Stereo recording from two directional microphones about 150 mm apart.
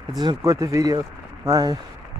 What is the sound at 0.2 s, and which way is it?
Speech, 25° right (ahead or behind).